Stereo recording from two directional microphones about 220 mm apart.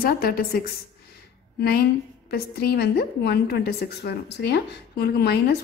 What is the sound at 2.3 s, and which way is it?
A woman's voice, 45° left (ahead or behind).